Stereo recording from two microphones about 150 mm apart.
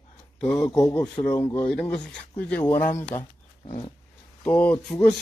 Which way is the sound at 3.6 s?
35° left (ahead or behind).